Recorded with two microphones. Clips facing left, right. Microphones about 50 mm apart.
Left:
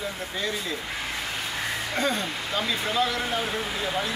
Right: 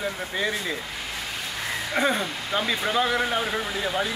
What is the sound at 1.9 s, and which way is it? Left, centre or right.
Speech, centre.